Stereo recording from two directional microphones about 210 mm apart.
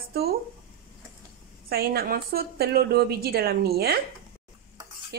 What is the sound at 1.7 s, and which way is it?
A woman's voice, 45° right (ahead or behind).